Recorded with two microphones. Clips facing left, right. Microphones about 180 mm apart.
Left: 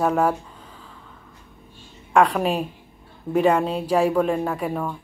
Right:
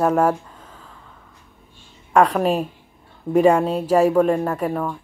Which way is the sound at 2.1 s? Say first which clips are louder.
Right 2 dB; 5° right (ahead or behind).